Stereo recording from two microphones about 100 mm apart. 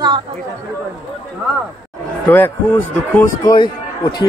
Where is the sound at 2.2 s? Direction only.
20° left (ahead or behind).